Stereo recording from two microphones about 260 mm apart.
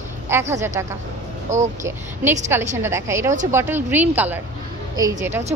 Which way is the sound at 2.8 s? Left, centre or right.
Centre.